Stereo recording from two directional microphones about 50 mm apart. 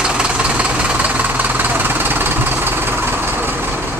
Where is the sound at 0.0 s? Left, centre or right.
Centre; by 4.0 s right.